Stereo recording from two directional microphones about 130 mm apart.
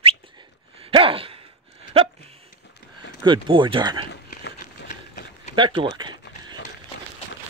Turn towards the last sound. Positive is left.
turn(degrees=-35)  # may be behind; listen again after turning